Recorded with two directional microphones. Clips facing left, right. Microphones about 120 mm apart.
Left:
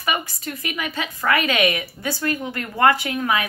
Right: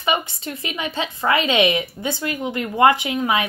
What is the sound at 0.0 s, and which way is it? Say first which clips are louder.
A woman's voice: right 3 dB; 25° right (ahead or behind).